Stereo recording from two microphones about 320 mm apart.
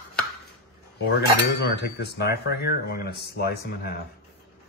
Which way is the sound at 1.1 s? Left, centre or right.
Left.